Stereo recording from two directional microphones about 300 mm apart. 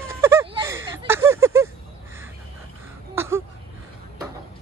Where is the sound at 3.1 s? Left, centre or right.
Centre.